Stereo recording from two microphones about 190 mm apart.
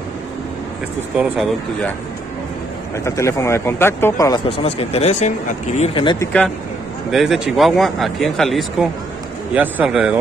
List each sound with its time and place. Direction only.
1.1 s speech: 5° right (ahead or behind)
3.0 s speech: 15° left (ahead or behind)
4.5 s speech: 30° left (ahead or behind)
6.1 s speech: 5° left (ahead or behind)